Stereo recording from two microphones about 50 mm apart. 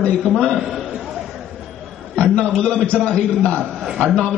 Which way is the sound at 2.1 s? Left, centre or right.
Left.